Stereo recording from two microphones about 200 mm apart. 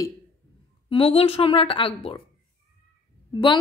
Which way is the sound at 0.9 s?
30° left (ahead or behind).